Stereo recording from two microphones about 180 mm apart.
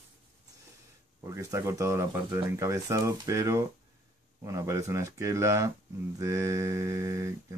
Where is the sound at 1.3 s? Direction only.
15° right (ahead or behind).